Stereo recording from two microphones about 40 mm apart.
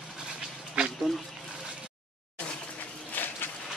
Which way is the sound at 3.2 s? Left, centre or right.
Left.